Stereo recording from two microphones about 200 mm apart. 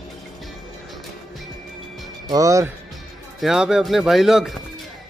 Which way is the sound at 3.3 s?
Centre (ahead or behind).